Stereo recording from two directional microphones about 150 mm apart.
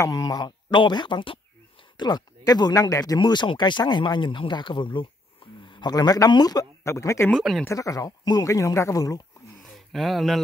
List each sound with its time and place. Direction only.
0.0 s speech: 25° left (ahead or behind)
7.2 s speech: centre (ahead or behind)
7.6 s speech: 20° left (ahead or behind)
9.9 s speech: centre (ahead or behind)